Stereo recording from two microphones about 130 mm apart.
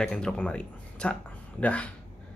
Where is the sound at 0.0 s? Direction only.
5° left (ahead or behind).